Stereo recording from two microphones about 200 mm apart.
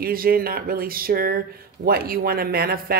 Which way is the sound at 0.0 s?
45° right (ahead or behind).